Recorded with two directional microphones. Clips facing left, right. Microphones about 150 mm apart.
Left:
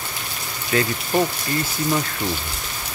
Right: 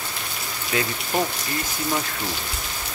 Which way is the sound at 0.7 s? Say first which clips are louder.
Left 4 dB; 15° right (ahead or behind).